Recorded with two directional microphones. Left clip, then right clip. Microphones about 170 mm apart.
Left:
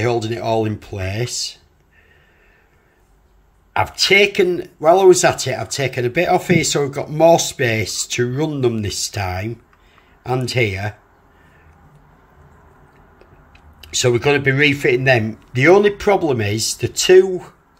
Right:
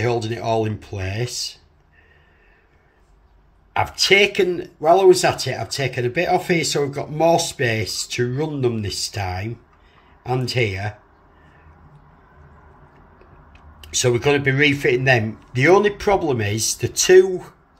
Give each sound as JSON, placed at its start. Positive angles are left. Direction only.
{"t": 0.0, "sound": "speech", "side_deg": 20}
{"t": 3.7, "sound": "speech", "side_deg": 20}
{"t": 13.2, "sound": "speech", "side_deg": 20}